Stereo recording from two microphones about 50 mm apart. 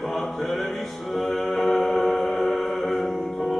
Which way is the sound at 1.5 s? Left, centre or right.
Centre.